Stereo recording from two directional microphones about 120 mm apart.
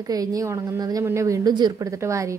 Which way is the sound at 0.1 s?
30° right (ahead or behind).